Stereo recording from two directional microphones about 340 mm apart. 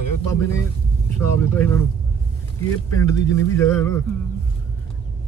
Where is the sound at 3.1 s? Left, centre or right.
Centre.